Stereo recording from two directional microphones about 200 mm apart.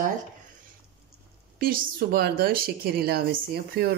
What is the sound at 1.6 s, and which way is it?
Speech, 50° right (ahead or behind).